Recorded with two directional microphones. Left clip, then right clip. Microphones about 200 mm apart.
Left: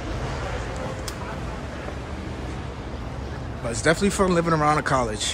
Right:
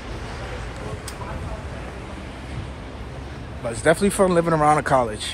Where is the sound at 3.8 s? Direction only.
Centre (ahead or behind).